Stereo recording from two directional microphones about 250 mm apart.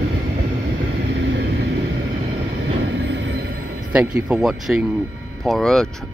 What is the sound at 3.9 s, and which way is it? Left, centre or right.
Speech, centre.